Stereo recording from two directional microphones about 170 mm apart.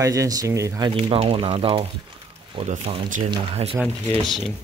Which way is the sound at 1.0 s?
35° right (ahead or behind).